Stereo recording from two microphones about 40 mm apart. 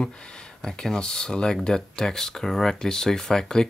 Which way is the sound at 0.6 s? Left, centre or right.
Centre.